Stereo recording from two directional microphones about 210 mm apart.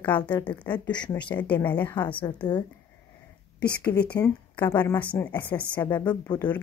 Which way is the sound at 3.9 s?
50° left (ahead or behind).